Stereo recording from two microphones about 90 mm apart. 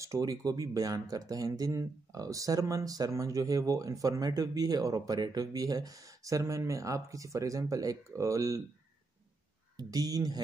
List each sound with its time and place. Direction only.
0.0 s speech: 40° right (ahead or behind)
9.8 s speech: 45° right (ahead or behind)